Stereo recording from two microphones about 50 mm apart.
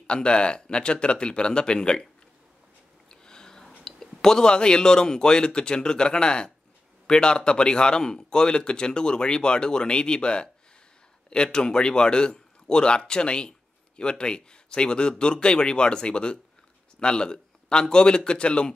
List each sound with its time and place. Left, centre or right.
0.0 s speech: centre
3.1 s a man's voice: centre